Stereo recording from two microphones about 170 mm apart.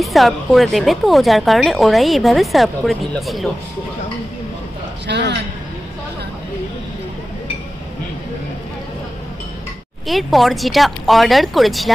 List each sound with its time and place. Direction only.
0.0 s a woman's voice: centre (ahead or behind)
5.0 s a man's voice: 90° right
10.0 s a woman's voice: centre (ahead or behind)